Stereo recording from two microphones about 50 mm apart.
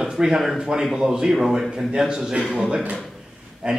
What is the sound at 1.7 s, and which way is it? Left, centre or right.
Speech, centre.